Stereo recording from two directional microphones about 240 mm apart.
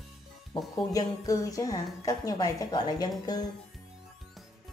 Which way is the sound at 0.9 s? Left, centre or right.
Centre.